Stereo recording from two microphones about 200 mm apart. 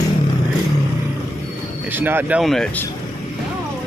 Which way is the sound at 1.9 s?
10° right (ahead or behind).